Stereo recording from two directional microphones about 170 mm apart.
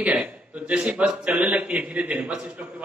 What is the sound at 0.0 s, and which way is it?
A man's voice, 10° right (ahead or behind).